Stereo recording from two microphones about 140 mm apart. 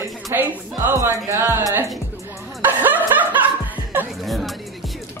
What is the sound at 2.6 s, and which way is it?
Snicker, 15° right (ahead or behind).